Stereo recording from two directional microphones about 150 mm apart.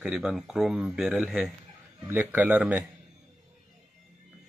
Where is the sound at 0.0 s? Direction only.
5° right (ahead or behind).